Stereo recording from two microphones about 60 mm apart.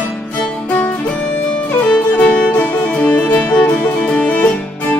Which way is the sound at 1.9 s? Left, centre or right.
Left.